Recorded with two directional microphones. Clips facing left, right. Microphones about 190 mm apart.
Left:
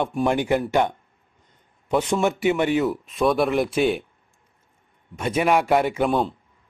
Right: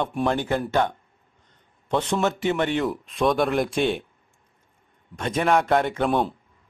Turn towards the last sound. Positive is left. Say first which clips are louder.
# left 1 dB
turn(degrees=0)  # may be behind; listen again after turning